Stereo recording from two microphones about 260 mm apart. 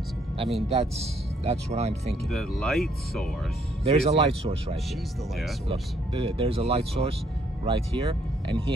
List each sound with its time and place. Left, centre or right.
0.7 s speech: right
2.2 s speech: centre
3.8 s speech: right